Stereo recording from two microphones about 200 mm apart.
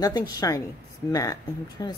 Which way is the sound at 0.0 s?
20° left (ahead or behind).